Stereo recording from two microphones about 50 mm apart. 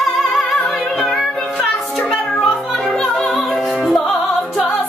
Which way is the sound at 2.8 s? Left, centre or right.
Centre.